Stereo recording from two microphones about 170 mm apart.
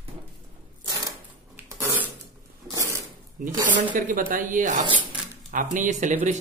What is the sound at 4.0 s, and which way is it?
Speech, 55° right (ahead or behind).